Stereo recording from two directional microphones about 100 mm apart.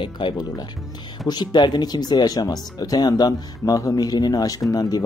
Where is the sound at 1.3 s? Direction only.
45° left (ahead or behind).